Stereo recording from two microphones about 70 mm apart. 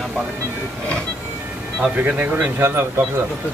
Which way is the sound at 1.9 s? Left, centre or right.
Right.